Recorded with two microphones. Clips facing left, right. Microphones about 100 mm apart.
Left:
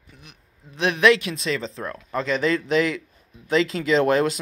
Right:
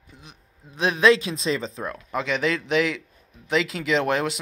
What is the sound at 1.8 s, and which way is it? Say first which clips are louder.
Speech: left 1 dB; 10° right (ahead or behind).